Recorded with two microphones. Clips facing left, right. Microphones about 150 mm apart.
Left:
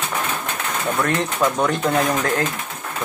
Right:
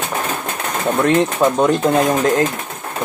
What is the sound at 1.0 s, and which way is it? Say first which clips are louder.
Speech: right 9 dB; 20° right (ahead or behind).